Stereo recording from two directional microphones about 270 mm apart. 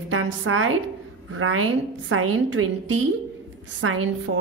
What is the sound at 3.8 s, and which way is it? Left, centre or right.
Speech, right.